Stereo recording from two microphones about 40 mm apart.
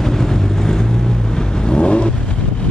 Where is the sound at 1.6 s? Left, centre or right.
Left.